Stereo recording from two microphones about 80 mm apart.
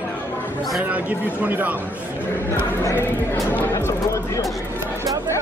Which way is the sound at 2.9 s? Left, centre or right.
Left.